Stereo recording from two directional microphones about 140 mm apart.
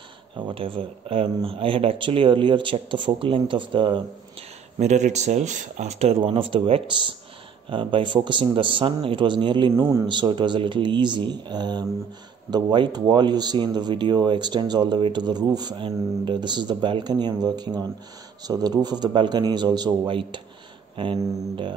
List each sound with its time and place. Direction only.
0.5 s speech: 40° right (ahead or behind)
4.7 s speech: 55° right (ahead or behind); by 9.7 s 35° right (ahead or behind)
9.8 s speech: 20° right (ahead or behind)
10.0 s speech: 35° right (ahead or behind)